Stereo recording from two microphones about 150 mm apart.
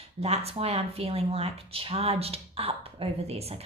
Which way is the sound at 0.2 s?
45° right (ahead or behind).